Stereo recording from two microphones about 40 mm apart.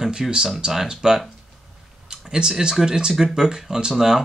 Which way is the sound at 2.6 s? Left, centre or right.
Centre.